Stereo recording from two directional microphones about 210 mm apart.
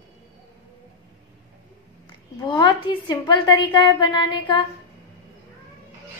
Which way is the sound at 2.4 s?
20° left (ahead or behind).